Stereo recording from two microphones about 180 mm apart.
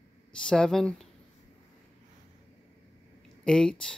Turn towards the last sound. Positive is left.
turn(degrees=5)  # may be behind; listen again after turning